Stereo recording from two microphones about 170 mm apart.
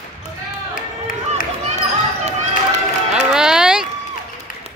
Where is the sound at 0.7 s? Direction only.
50° left (ahead or behind).